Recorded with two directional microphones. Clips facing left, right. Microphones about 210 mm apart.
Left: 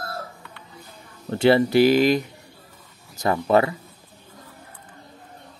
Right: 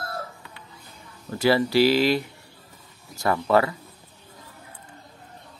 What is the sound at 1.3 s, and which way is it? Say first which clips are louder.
Speech: left 4 dB; 25° left (ahead or behind).